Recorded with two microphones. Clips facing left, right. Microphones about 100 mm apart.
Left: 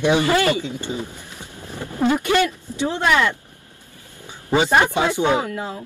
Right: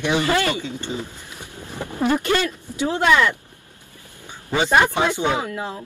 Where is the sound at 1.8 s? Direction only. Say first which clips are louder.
Left 1 dB; 15° right (ahead or behind).